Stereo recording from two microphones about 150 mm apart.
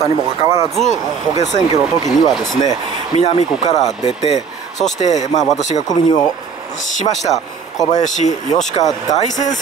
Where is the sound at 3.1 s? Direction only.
45° left (ahead or behind).